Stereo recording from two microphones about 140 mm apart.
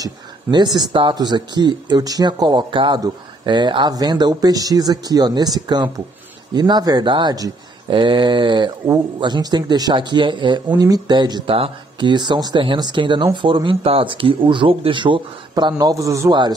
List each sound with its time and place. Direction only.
0.0 s speech: 30° right (ahead or behind)